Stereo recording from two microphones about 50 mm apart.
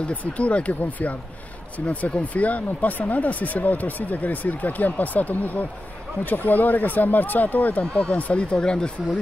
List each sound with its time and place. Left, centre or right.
0.1 s speech: left
7.8 s speech: left